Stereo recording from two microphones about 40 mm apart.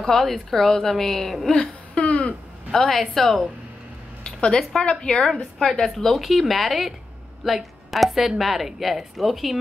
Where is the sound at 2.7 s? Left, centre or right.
Centre.